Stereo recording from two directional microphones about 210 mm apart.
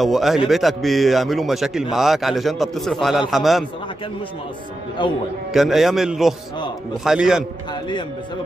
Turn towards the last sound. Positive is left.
turn(degrees=-5)  # may be behind; listen again after turning